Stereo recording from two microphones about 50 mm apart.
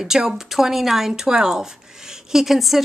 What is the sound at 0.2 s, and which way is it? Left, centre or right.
Speech, centre.